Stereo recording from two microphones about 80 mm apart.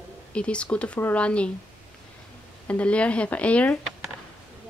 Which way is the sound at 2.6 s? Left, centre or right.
Centre.